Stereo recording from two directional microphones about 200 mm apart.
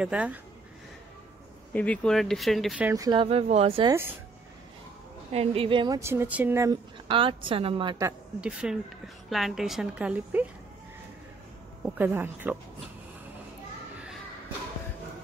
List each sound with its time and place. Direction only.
0.0 s speech: 5° right (ahead or behind)
1.7 s speech: 5° left (ahead or behind)
2.9 s speech: 20° right (ahead or behind)
5.3 s speech: 30° right (ahead or behind)
8.4 s speech: 5° right (ahead or behind)
11.8 s a woman's voice: 10° right (ahead or behind)